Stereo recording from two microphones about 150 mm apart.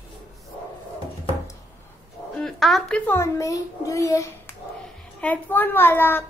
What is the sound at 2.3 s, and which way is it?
A child's voice, centre (ahead or behind).